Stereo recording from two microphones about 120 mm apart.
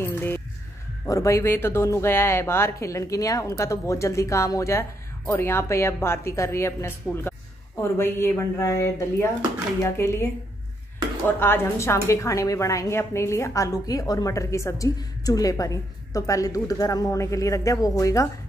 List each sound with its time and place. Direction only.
0.0 s music: 20° left (ahead or behind)
1.0 s a woman's voice: 25° left (ahead or behind)
11.3 s a woman's voice: 20° left (ahead or behind)